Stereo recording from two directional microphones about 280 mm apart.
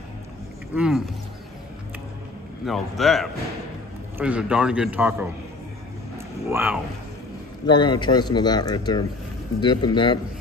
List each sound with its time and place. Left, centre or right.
0.7 s a man's voice: centre
2.6 s a man's voice: centre
6.5 s speech: centre
7.6 s speech: centre